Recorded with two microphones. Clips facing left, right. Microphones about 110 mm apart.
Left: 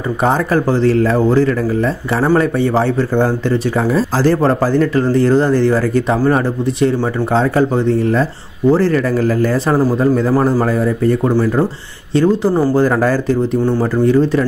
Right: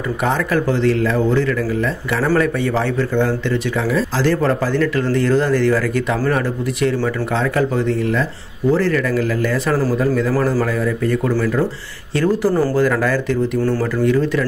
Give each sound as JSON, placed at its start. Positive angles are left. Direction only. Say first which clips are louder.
{"t": 0.2, "sound": "speech", "louder": "left 4 dB", "side_deg": 35}
{"t": 10.3, "sound": "speech", "louder": "left 4 dB", "side_deg": 20}
{"t": 10.6, "sound": "speech", "louder": "left 4 dB", "side_deg": 35}
{"t": 12.2, "sound": "speech", "louder": "left 3 dB", "side_deg": 20}
{"t": 12.7, "sound": "speech", "louder": "left 3 dB", "side_deg": 35}
{"t": 13.6, "sound": "speech", "louder": "left 3 dB", "side_deg": 20}
{"t": 14.0, "sound": "speech", "louder": "left 4 dB", "side_deg": 35}